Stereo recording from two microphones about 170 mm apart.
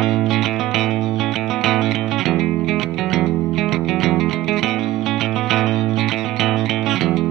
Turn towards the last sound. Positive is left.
turn(degrees=0)  # may be behind; listen again after turning